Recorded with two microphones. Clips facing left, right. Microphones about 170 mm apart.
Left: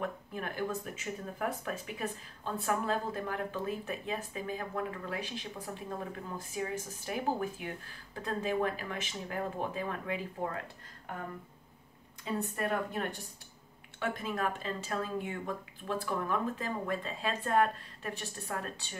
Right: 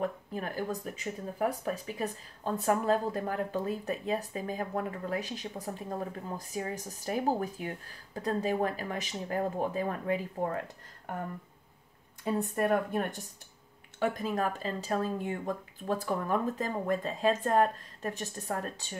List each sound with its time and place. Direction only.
0.0 s speech: 40° right (ahead or behind)
12.5 s speech: 45° right (ahead or behind)